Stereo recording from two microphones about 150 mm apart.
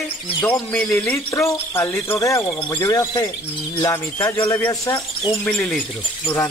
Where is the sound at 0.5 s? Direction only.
10° left (ahead or behind).